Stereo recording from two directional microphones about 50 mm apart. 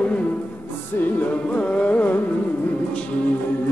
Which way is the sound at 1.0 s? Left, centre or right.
Left.